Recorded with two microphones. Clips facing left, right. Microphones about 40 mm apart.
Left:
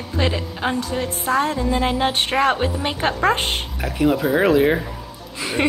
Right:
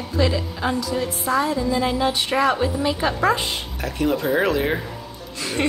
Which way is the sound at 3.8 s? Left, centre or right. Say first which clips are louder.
Left 3 dB; centre.